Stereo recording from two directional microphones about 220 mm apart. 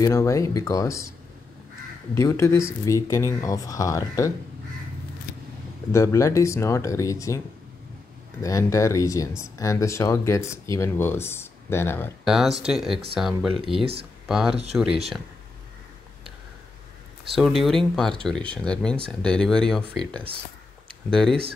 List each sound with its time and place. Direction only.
0.0 s speech: 15° left (ahead or behind)
2.1 s speech: 15° left (ahead or behind)
5.9 s speech: 15° left (ahead or behind)
12.3 s speech: centre (ahead or behind)
13.6 s speech: 25° right (ahead or behind)
14.2 s speech: centre (ahead or behind)
17.4 s speech: centre (ahead or behind)